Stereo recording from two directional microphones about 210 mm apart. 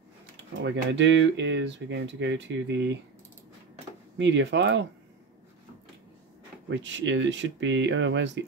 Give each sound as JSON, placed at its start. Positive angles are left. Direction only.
{"t": 0.6, "sound": "speech", "side_deg": -60}
{"t": 4.2, "sound": "speech", "side_deg": -60}
{"t": 6.7, "sound": "speech", "side_deg": -60}